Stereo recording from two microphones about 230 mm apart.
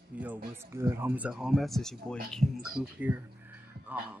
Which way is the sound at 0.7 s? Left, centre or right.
Centre.